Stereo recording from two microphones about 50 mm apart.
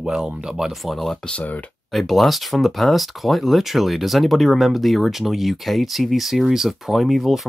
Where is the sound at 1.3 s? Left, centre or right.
Left.